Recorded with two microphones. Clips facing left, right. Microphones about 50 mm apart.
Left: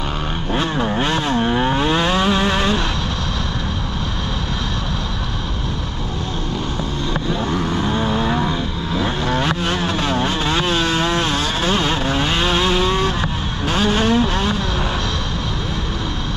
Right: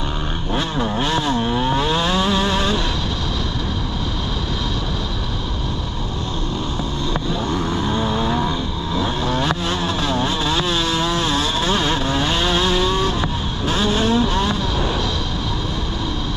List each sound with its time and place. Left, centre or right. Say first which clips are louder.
0.6 s vehicle: left 2 dB; left
7.7 s vehicle: left 1 dB; left
9.7 s vehicle: left 1 dB; left